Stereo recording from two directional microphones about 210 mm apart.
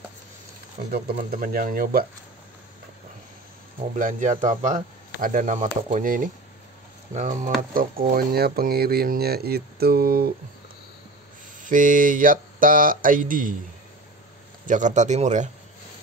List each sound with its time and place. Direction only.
0.9 s speech: 45° right (ahead or behind)
3.9 s speech: 35° right (ahead or behind)
11.6 s speech: 40° right (ahead or behind)
14.7 s speech: 35° right (ahead or behind)